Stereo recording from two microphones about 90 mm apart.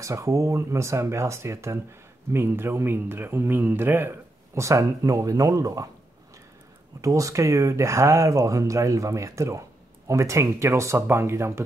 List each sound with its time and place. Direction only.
0.0 s speech: 35° right (ahead or behind)
7.0 s speech: 35° right (ahead or behind)